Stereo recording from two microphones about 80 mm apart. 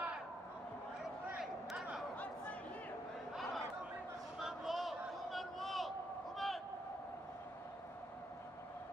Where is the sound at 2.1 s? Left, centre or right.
Centre.